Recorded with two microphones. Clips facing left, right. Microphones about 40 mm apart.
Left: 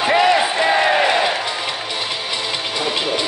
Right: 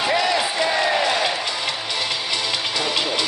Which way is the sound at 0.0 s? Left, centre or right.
Left.